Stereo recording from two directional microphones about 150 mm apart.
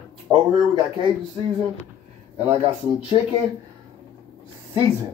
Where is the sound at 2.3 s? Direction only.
45° right (ahead or behind).